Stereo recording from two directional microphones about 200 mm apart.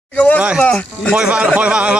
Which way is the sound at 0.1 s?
5° left (ahead or behind).